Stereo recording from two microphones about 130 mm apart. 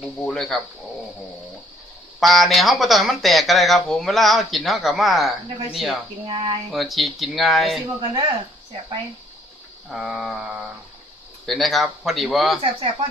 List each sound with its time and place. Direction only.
0.0 s speech: centre (ahead or behind)
2.1 s speech: centre (ahead or behind)
6.2 s speech: 50° right (ahead or behind)
6.7 s speech: centre (ahead or behind)
8.1 s speech: 40° right (ahead or behind)
9.8 s speech: 5° right (ahead or behind)